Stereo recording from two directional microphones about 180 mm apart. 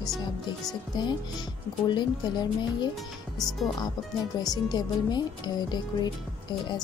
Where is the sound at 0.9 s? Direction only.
25° left (ahead or behind).